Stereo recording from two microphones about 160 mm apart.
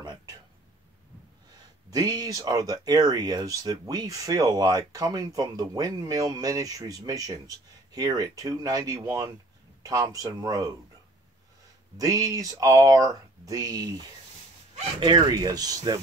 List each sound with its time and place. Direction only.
1.9 s speech: 25° right (ahead or behind)
12.0 s speech: 20° right (ahead or behind)